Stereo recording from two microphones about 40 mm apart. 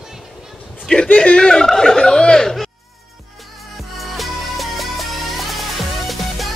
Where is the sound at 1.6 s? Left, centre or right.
Centre.